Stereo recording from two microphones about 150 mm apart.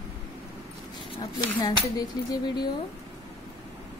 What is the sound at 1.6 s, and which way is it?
A woman's voice, 25° left (ahead or behind).